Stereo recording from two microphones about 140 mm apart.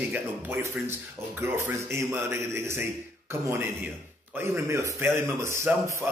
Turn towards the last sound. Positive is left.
turn(degrees=-20)  # may be behind; listen again after turning